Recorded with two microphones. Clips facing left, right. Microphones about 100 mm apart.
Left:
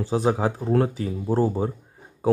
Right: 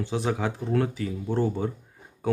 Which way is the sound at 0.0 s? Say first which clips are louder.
Left 5 dB; 35° left (ahead or behind).